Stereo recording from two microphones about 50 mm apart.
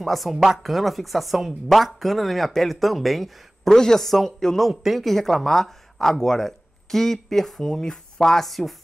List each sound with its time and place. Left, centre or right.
0.0 s speech: centre